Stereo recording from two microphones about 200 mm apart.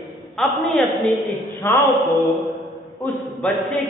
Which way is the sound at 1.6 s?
15° left (ahead or behind).